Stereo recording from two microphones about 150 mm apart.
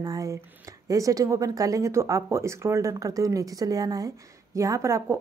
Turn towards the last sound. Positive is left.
turn(degrees=-20)  # may be behind; listen again after turning